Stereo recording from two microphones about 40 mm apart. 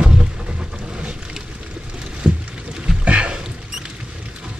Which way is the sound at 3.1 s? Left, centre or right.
Right.